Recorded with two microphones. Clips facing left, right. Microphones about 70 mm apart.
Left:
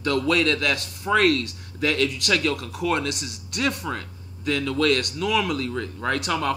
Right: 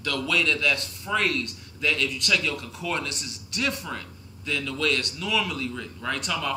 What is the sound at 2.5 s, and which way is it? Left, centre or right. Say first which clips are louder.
A man's voice: left 5 dB; left.